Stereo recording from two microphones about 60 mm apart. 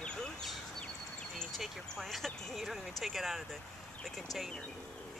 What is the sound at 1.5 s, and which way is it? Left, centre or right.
Speech, centre.